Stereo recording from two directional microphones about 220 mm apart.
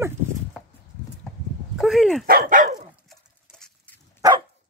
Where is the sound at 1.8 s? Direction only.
Centre (ahead or behind).